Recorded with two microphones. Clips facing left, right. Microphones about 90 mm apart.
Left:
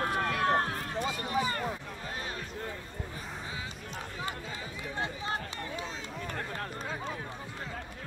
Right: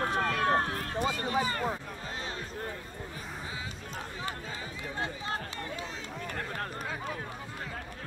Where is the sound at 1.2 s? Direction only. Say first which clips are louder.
Right 1 dB; 35° right (ahead or behind).